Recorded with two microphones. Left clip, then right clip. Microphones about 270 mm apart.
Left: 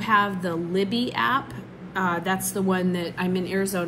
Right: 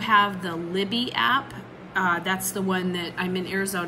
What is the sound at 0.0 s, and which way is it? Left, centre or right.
A woman's voice, centre.